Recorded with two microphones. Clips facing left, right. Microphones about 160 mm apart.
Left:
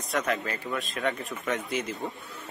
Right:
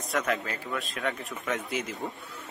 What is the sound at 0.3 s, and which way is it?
Speech, centre (ahead or behind).